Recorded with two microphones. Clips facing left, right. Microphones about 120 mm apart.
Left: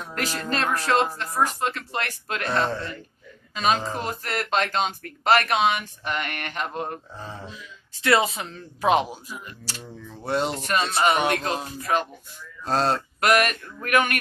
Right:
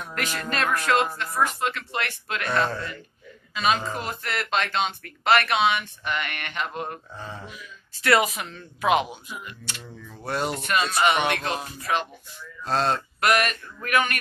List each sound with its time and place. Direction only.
0.1 s speech: 30° left (ahead or behind)
2.4 s speech: 25° left (ahead or behind); by 12.1 s 45° left (ahead or behind)
12.6 s a sound: 40° left (ahead or behind)
13.8 s speech: 50° left (ahead or behind)